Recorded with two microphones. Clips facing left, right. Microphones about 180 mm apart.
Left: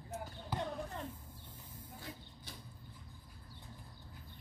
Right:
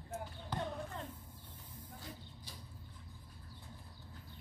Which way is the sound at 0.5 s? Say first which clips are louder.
Left 1 dB; 10° left (ahead or behind).